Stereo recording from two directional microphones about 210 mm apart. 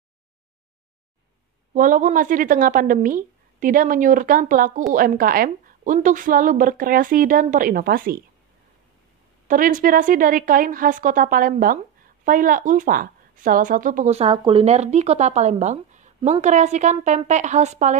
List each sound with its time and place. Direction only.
1.7 s speech: 40° right (ahead or behind)
9.5 s speech: 40° right (ahead or behind)